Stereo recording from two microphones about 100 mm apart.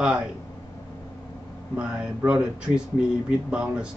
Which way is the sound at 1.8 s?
10° right (ahead or behind).